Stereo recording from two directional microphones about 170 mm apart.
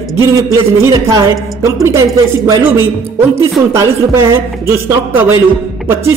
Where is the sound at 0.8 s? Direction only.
15° right (ahead or behind).